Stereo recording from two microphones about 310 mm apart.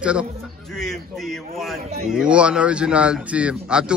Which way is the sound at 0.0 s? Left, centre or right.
Centre.